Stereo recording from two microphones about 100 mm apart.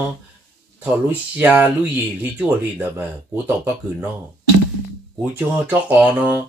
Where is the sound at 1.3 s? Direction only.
15° right (ahead or behind).